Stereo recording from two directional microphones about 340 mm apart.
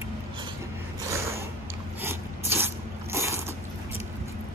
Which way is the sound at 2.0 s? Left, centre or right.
Centre.